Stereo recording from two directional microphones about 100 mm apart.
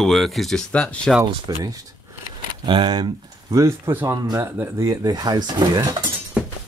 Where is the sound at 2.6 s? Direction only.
50° right (ahead or behind).